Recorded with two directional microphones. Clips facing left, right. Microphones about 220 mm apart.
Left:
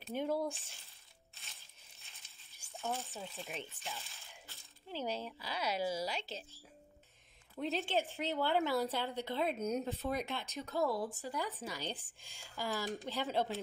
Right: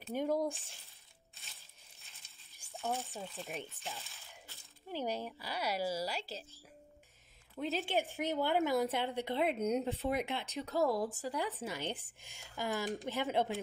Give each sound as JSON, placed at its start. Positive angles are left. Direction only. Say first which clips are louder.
{"t": 0.1, "sound": "speech", "louder": "right 2 dB", "side_deg": -15}
{"t": 0.5, "sound": "speech", "louder": "right 2 dB", "side_deg": 0}
{"t": 2.5, "sound": "a sound", "louder": "right 2 dB", "side_deg": -15}
{"t": 3.3, "sound": "speech", "louder": "right 2 dB", "side_deg": 0}
{"t": 4.9, "sound": "speech", "louder": "right 2 dB", "side_deg": -15}
{"t": 7.8, "sound": "speech", "louder": "right 1 dB", "side_deg": -15}
{"t": 10.4, "sound": "speech", "louder": "right 3 dB", "side_deg": -35}
{"t": 11.3, "sound": "speech", "louder": "right 3 dB", "side_deg": -25}